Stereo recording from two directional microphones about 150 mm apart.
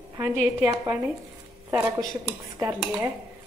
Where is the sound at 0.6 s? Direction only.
20° right (ahead or behind).